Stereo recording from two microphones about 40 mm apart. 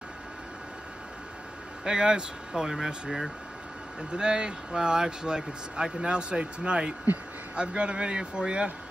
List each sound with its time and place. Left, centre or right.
1.9 s speech: centre
4.1 s speech: right